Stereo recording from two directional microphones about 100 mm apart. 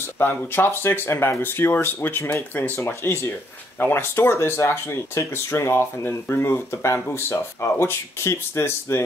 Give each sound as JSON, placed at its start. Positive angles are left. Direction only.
{"t": 0.2, "sound": "speech", "side_deg": 20}